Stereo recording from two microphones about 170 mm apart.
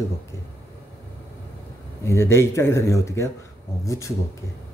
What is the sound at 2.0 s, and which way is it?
Speech, 15° left (ahead or behind).